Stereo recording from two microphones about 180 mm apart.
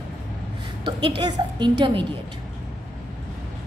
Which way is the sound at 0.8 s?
25° right (ahead or behind).